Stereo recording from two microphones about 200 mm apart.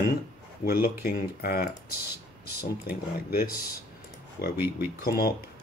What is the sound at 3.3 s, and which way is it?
Speech, 50° left (ahead or behind).